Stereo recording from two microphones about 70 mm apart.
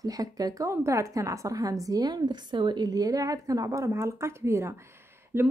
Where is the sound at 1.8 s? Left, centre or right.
Right.